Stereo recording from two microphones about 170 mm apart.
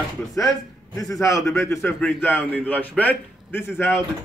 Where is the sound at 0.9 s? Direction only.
20° left (ahead or behind).